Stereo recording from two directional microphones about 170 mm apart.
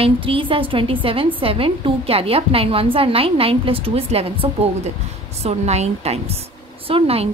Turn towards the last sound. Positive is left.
turn(degrees=-35)  # may be behind; listen again after turning